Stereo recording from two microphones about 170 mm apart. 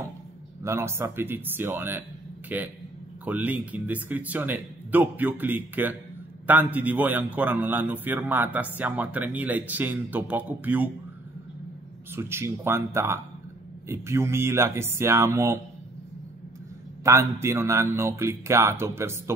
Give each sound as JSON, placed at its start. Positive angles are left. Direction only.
{"t": 0.7, "sound": "speech", "side_deg": -15}
{"t": 12.2, "sound": "speech", "side_deg": -15}
{"t": 17.0, "sound": "speech", "side_deg": -15}